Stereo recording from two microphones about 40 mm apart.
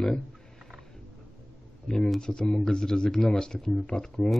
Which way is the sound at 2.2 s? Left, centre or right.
Centre.